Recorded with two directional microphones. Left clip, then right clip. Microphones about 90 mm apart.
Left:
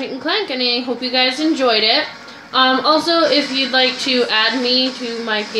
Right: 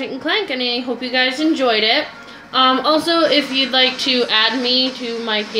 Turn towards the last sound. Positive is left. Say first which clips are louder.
# even
turn(degrees=5)  # may be behind; listen again after turning